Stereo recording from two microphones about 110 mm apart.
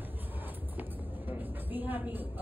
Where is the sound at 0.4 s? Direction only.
15° right (ahead or behind).